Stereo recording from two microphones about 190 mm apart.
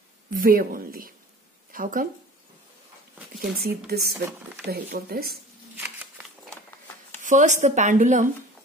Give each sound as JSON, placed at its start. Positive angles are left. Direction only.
{"t": 0.3, "sound": "speech", "side_deg": -50}
{"t": 3.3, "sound": "speech", "side_deg": -55}
{"t": 7.2, "sound": "speech", "side_deg": -40}